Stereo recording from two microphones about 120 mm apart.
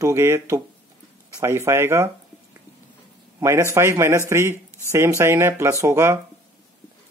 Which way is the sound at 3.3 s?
25° right (ahead or behind).